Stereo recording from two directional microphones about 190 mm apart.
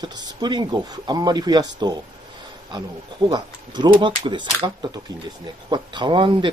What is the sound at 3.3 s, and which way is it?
Speech, 20° right (ahead or behind).